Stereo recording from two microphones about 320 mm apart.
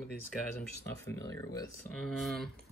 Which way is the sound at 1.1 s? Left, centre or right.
Centre.